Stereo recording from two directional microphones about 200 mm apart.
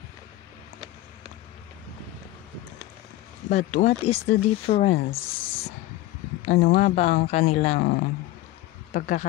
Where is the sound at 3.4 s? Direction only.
35° left (ahead or behind).